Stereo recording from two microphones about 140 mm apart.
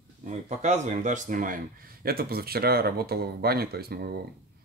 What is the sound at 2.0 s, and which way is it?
Speech, 90° right.